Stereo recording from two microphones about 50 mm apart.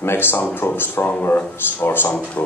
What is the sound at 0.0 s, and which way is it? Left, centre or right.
A man's voice, left.